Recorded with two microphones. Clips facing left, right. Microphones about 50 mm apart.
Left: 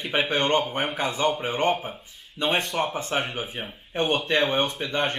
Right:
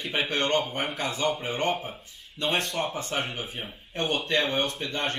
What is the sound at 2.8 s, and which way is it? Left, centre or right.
Speech, left.